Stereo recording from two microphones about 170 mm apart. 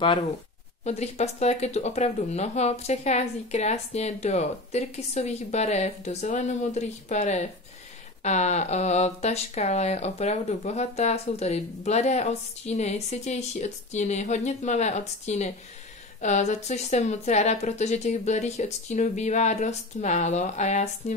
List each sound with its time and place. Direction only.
0.8 s speech: 40° left (ahead or behind)